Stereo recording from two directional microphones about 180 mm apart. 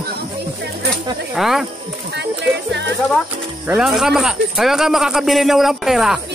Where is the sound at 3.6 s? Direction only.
5° right (ahead or behind).